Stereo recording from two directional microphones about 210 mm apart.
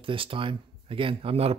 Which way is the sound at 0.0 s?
25° right (ahead or behind).